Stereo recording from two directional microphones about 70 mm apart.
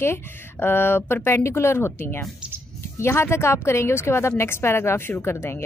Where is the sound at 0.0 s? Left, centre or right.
Left.